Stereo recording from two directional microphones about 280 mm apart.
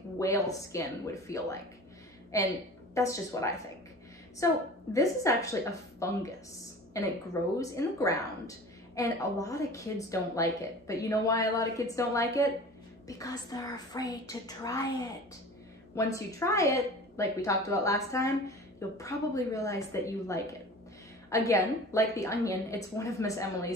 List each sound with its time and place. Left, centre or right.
0.2 s a woman's voice: centre
15.9 s a woman's voice: centre